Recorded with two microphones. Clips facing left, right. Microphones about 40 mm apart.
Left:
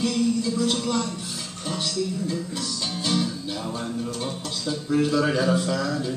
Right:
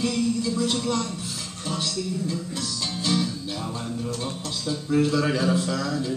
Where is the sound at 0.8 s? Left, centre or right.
Centre.